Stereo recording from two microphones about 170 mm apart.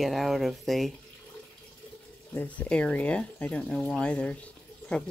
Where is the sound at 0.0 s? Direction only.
Centre (ahead or behind).